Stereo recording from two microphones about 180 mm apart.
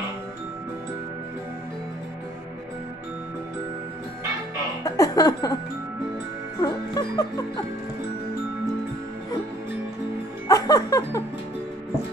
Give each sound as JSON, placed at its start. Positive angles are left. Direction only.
{"t": 4.8, "sound": "music", "side_deg": 20}
{"t": 6.6, "sound": "music", "side_deg": 20}
{"t": 10.5, "sound": "music", "side_deg": 20}